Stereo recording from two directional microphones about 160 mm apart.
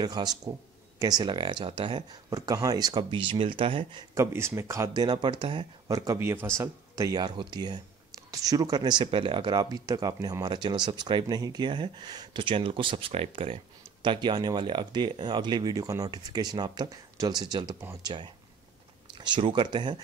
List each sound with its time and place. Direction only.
0.0 s speech: 25° right (ahead or behind)
4.1 s speech: 15° right (ahead or behind)